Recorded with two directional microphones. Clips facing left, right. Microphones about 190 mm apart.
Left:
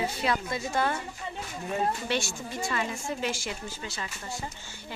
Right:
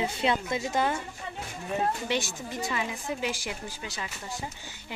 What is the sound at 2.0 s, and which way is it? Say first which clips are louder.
A woman's voice: even; 15° right (ahead or behind).